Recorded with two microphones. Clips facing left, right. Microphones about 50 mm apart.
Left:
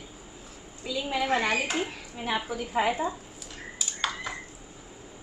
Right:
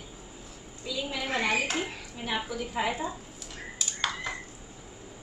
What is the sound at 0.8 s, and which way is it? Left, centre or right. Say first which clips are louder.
Speech: left 4 dB; left.